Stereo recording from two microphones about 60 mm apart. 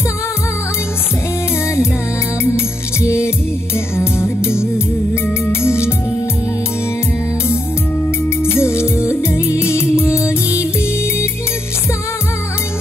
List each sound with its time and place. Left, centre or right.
2.4 s music: left
8.4 s music: left